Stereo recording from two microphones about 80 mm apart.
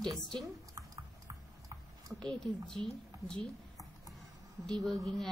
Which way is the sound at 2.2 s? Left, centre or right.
Centre.